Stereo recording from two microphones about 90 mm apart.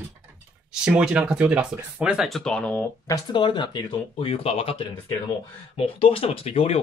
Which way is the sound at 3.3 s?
60° left (ahead or behind).